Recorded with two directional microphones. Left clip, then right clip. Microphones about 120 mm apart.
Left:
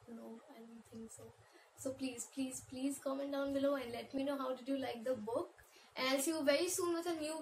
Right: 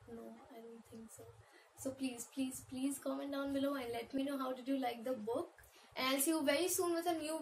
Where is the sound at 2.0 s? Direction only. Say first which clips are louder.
Right 1 dB; 5° right (ahead or behind).